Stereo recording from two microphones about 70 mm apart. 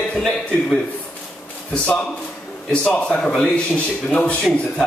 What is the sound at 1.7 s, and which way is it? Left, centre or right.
A man's voice, left.